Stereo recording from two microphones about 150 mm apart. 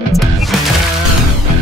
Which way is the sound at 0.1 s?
Centre (ahead or behind).